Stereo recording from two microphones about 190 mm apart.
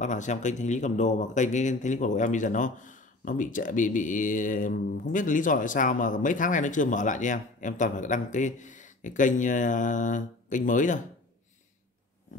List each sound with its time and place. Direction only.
0.0 s a man's voice: 40° left (ahead or behind)